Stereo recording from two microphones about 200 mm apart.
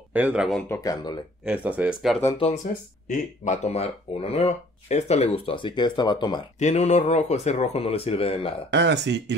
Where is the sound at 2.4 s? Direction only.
30° left (ahead or behind).